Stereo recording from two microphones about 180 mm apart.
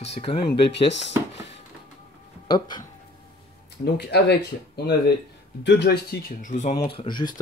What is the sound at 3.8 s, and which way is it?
Speech, 65° left (ahead or behind).